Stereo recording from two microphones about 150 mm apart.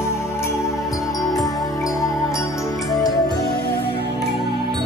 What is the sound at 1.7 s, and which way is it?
Music, 20° left (ahead or behind).